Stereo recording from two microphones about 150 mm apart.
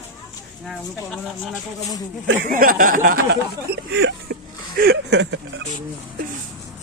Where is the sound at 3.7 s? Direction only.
85° right.